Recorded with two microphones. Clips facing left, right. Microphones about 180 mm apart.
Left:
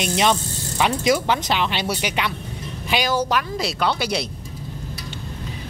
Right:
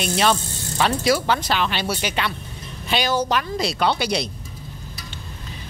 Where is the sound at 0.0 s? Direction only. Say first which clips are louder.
Even; 20° left (ahead or behind).